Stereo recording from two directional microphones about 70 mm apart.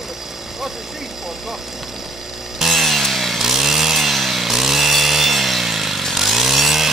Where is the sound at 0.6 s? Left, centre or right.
Centre.